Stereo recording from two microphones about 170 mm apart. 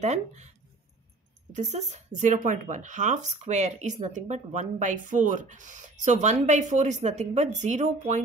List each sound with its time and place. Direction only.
0.0 s speech: 40° right (ahead or behind)
1.5 s speech: 45° right (ahead or behind)